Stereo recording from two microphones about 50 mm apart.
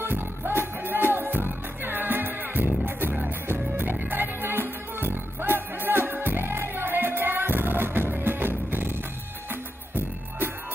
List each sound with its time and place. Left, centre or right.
0.0 s music: right